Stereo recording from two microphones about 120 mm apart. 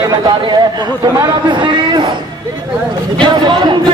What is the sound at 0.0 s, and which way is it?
A man's voice, 30° right (ahead or behind).